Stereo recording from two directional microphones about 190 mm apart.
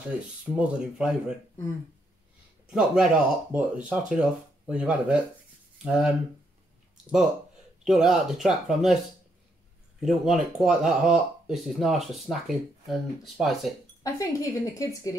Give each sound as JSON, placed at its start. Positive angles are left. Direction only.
{"t": 0.1, "sound": "speech", "side_deg": -5}
{"t": 2.7, "sound": "speech", "side_deg": -5}
{"t": 7.8, "sound": "speech", "side_deg": 0}
{"t": 9.9, "sound": "speech", "side_deg": 0}
{"t": 14.0, "sound": "a woman's voice", "side_deg": 15}